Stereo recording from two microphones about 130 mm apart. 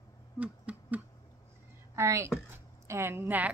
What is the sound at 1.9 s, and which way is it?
A woman's voice, 20° right (ahead or behind).